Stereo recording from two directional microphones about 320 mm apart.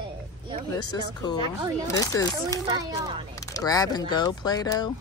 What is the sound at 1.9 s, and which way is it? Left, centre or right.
Speech, centre.